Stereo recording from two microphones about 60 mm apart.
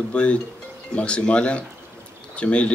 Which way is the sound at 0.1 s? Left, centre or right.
Centre.